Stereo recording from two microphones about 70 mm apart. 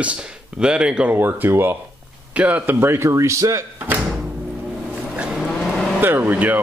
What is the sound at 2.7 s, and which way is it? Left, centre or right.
Speech, right.